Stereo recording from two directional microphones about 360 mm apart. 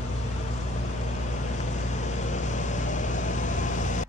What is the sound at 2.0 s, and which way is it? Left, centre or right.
Vehicle, centre.